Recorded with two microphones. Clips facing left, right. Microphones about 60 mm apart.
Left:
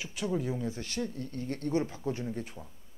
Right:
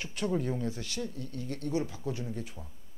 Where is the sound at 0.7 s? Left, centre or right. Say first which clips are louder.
Left 1 dB; left.